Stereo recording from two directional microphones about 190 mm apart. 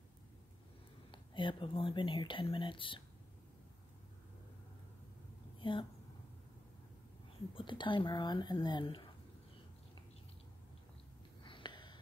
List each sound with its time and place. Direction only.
1.1 s speech: 25° left (ahead or behind)
5.6 s a woman's voice: 25° left (ahead or behind)
7.5 s speech: 25° left (ahead or behind)
11.4 s gasp: 25° left (ahead or behind)